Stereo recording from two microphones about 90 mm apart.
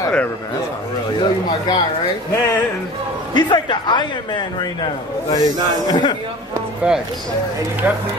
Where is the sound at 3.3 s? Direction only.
60° left (ahead or behind).